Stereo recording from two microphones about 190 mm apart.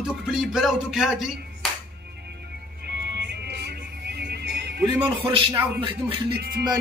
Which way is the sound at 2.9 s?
60° right (ahead or behind).